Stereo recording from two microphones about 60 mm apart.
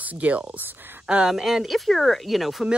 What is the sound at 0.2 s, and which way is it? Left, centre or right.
Speech, right.